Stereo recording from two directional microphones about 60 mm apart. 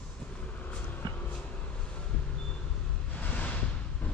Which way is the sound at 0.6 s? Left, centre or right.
Left.